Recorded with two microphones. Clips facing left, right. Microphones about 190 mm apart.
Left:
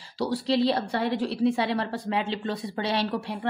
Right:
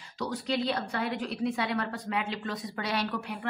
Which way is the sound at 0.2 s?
30° left (ahead or behind).